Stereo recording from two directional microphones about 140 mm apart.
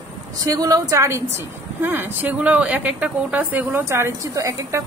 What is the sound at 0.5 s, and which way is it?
Speech, 25° right (ahead or behind).